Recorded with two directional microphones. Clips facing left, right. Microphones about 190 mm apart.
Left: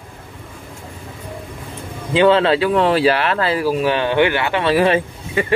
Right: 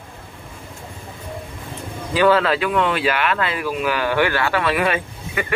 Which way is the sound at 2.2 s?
25° left (ahead or behind).